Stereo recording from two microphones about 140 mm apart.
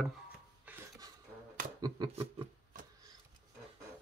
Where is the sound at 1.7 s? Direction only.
25° right (ahead or behind).